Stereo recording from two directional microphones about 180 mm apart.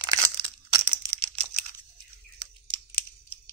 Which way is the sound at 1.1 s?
35° right (ahead or behind).